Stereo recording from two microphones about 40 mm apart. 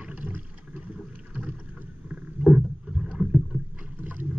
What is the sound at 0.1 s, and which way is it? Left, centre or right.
Boat, right.